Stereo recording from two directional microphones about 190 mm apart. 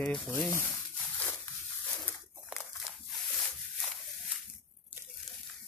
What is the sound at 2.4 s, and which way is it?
Crumpling, centre (ahead or behind).